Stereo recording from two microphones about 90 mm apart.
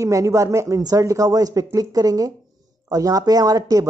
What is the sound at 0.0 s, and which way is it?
Speech, 35° right (ahead or behind).